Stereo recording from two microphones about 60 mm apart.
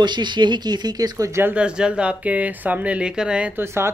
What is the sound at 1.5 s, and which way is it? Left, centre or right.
Speech, centre.